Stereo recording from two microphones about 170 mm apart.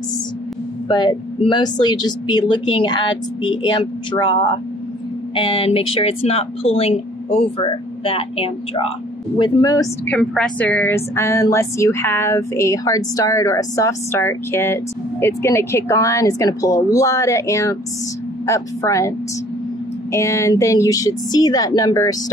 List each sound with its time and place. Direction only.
0.8 s speech: 25° left (ahead or behind)
9.4 s speech: 20° left (ahead or behind)
10.0 s a woman's voice: 5° left (ahead or behind)